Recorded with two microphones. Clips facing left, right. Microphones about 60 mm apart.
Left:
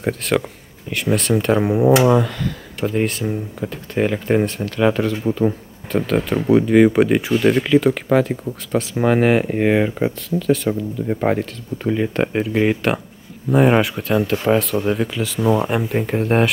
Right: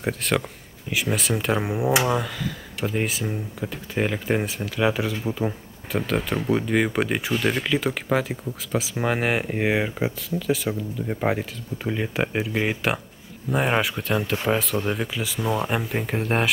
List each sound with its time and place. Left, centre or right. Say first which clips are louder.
0.0 s speech: left 5 dB; centre